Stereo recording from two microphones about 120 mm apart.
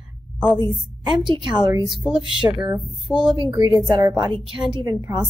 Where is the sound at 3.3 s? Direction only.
40° right (ahead or behind).